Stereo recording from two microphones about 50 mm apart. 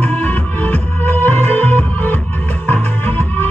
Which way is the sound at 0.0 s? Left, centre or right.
Left.